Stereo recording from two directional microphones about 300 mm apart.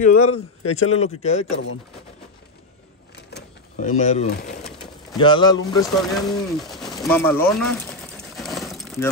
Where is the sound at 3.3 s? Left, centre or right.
Left.